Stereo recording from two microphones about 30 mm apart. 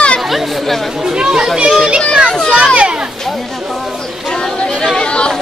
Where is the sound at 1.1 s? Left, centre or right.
Right.